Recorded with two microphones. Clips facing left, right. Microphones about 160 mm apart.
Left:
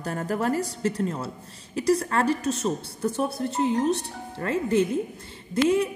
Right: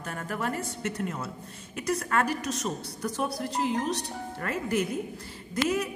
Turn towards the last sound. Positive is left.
turn(degrees=30)  # may be behind; listen again after turning